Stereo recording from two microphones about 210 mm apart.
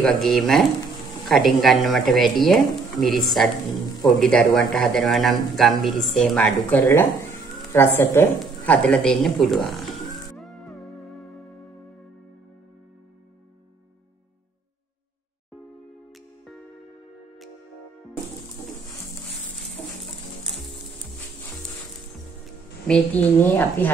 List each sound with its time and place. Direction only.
0.0 s speech: centre (ahead or behind)
6.8 s a woman's voice: 15° left (ahead or behind)
7.7 s a sound: 10° left (ahead or behind)
22.8 s a woman's voice: 5° left (ahead or behind)